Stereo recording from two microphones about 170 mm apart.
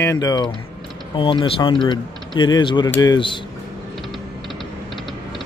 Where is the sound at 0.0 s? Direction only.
20° left (ahead or behind).